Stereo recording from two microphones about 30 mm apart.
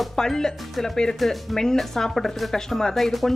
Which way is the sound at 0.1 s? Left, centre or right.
Centre.